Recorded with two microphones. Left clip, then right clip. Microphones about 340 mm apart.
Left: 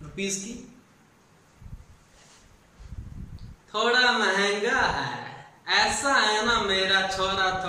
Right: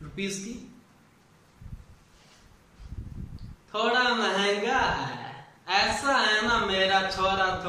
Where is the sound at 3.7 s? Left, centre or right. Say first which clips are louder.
Left 3 dB; centre.